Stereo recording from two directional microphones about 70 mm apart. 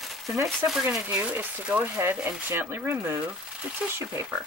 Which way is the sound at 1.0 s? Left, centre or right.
Right.